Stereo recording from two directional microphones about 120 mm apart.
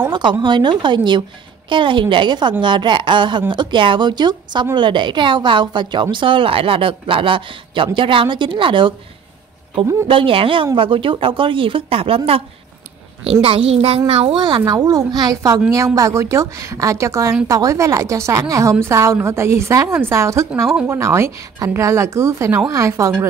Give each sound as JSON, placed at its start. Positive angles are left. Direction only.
{"t": 0.1, "sound": "a woman's voice", "side_deg": -40}
{"t": 10.0, "sound": "a woman's voice", "side_deg": -45}
{"t": 13.2, "sound": "a woman's voice", "side_deg": -55}
{"t": 14.6, "sound": "a woman's voice", "side_deg": -30}